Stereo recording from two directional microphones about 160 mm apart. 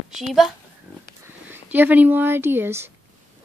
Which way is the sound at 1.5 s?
10° right (ahead or behind).